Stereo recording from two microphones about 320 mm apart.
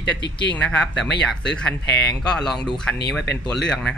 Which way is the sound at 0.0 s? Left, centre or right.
Left.